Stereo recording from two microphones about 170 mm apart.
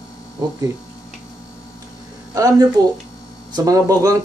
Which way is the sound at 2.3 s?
20° right (ahead or behind).